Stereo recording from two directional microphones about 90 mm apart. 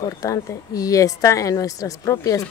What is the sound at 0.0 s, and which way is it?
Speech, 40° left (ahead or behind).